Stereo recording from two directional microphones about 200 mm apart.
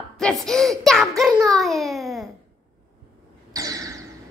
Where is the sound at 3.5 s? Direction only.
15° right (ahead or behind).